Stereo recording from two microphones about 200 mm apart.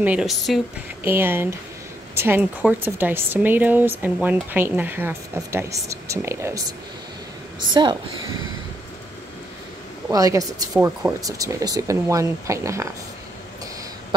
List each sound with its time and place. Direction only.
0.0 s speech: 5° right (ahead or behind)
7.7 s speech: 20° right (ahead or behind)
10.0 s speech: 15° right (ahead or behind)
10.7 s speech: 5° right (ahead or behind)